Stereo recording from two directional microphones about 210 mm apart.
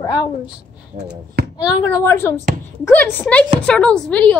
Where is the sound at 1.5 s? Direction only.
20° left (ahead or behind).